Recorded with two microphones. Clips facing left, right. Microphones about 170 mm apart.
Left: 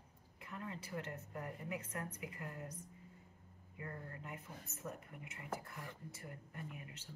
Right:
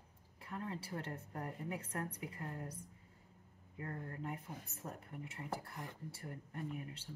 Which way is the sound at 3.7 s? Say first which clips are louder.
Right 4 dB; 35° right (ahead or behind).